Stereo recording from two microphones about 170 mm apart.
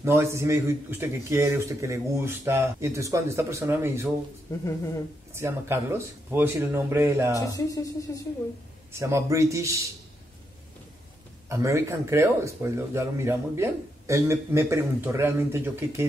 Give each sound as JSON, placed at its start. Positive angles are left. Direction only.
{"t": 0.0, "sound": "speech", "side_deg": -15}
{"t": 5.3, "sound": "speech", "side_deg": -15}
{"t": 7.3, "sound": "speech", "side_deg": 20}
{"t": 9.0, "sound": "speech", "side_deg": -15}
{"t": 11.4, "sound": "speech", "side_deg": -15}